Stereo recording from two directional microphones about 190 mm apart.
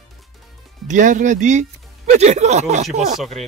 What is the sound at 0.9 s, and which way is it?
Speech, 40° right (ahead or behind).